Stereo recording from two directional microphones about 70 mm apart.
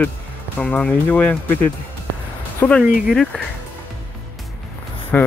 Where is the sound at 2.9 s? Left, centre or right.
Centre.